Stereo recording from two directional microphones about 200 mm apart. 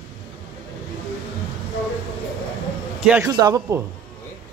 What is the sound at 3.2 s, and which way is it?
Speech, 20° right (ahead or behind).